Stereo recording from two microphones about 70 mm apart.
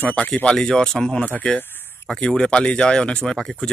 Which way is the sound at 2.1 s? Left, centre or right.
Centre.